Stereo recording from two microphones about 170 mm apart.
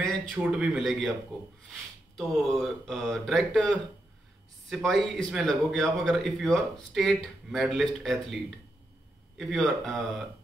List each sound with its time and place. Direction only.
0.3 s speech: 5° right (ahead or behind)
2.1 s speech: centre (ahead or behind)